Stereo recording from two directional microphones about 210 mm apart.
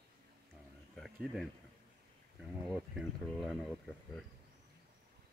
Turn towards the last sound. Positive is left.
turn(degrees=0)  # may be behind; listen again after turning